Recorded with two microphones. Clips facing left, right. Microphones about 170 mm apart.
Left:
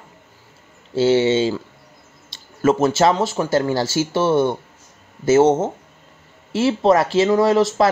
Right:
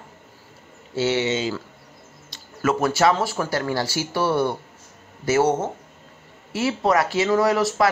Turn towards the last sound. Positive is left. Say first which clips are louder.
# left 4 dB
turn(degrees=25)  # may be behind; listen again after turning